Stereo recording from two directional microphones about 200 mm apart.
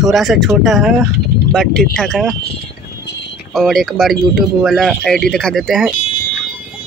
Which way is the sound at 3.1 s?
55° left (ahead or behind).